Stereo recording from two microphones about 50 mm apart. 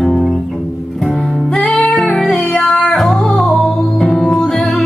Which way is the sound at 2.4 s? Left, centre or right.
Centre.